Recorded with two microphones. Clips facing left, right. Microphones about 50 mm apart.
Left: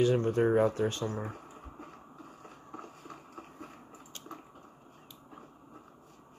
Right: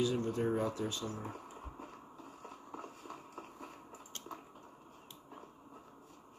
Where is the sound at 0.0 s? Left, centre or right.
Left.